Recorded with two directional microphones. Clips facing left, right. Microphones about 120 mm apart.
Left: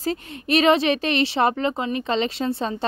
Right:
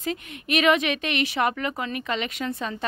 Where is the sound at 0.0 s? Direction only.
35° left (ahead or behind).